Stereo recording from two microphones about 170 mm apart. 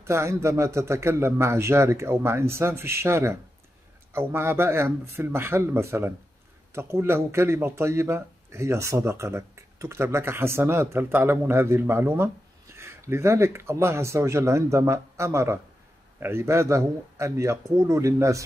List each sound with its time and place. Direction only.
0.0 s speech: 15° right (ahead or behind)